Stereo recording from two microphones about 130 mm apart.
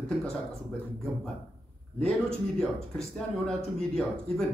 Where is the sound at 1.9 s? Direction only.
5° left (ahead or behind).